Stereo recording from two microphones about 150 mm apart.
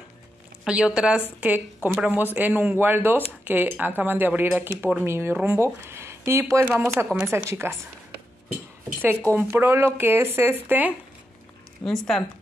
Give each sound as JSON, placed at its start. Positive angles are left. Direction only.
{"t": 0.7, "sound": "speech", "side_deg": -5}
{"t": 9.3, "sound": "speech", "side_deg": -15}
{"t": 11.8, "sound": "speech", "side_deg": 5}